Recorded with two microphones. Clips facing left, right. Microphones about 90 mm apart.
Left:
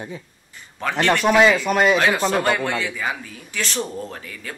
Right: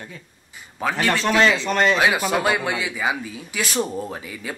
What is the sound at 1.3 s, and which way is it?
Speech, 10° left (ahead or behind).